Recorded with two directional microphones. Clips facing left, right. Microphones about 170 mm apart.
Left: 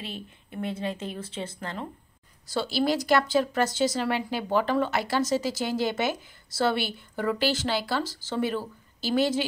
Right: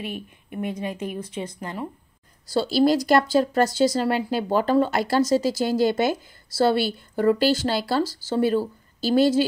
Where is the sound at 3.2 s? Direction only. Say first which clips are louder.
Right 4 dB; 10° right (ahead or behind).